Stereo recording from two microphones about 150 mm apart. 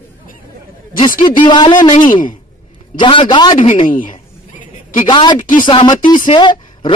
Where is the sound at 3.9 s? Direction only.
65° left (ahead or behind).